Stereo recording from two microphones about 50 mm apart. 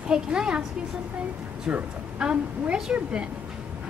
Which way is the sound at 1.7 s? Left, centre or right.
Right.